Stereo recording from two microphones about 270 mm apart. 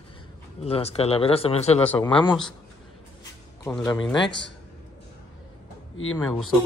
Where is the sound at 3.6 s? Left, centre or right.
Centre.